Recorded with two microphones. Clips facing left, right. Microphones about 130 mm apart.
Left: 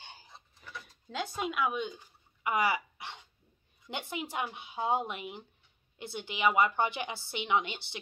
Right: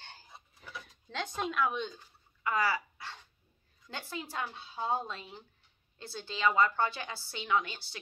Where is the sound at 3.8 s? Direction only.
20° left (ahead or behind).